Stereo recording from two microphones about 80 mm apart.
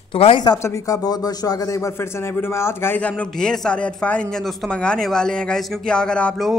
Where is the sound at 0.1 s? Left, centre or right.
Left.